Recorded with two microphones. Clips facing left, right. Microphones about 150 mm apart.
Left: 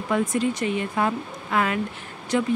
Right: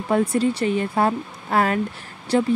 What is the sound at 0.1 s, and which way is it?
Speech, 35° right (ahead or behind).